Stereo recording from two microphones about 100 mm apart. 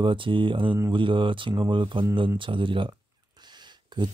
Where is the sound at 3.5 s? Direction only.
50° right (ahead or behind).